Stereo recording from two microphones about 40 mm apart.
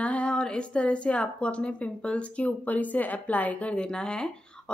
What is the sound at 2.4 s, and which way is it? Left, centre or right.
A woman's voice, left.